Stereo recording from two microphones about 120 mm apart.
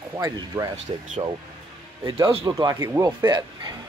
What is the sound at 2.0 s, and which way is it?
Speech, 30° right (ahead or behind).